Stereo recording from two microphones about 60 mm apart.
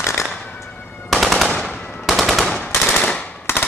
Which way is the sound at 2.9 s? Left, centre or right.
Centre.